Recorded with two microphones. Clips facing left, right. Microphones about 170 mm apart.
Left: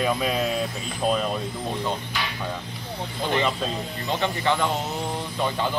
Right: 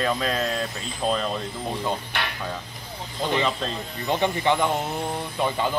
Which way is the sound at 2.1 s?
60° right (ahead or behind).